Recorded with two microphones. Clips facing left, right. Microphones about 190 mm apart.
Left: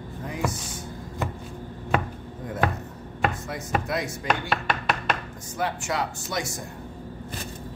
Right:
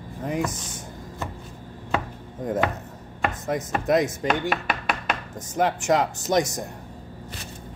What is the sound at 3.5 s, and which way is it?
Speech, 45° right (ahead or behind).